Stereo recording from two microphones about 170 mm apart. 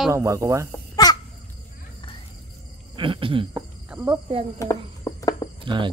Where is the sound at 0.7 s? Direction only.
20° left (ahead or behind).